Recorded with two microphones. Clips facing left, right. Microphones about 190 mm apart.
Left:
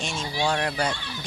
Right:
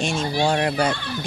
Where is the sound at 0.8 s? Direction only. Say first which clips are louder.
Right 6 dB; 65° right (ahead or behind).